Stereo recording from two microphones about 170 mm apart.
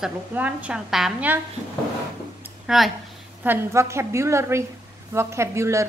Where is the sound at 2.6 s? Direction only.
Centre (ahead or behind).